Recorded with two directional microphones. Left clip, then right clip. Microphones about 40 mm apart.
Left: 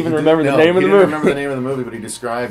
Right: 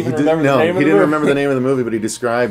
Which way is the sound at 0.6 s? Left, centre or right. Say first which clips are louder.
Left 2 dB; right.